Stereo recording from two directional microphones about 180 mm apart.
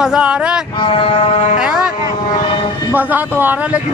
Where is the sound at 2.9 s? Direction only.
10° right (ahead or behind).